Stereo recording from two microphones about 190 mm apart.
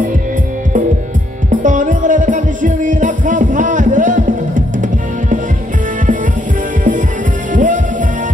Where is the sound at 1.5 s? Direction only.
45° right (ahead or behind).